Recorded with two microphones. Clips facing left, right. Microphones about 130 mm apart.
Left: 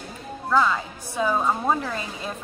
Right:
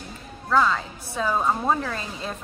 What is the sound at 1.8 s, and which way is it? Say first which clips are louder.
Speech: even; 15° left (ahead or behind).